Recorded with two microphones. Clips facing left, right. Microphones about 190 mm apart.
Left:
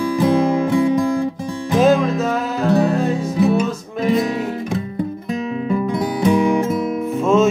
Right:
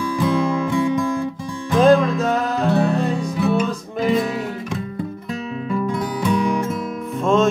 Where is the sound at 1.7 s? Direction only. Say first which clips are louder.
Right 1 dB; 5° left (ahead or behind).